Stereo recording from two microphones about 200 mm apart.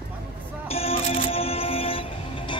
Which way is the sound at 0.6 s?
30° left (ahead or behind).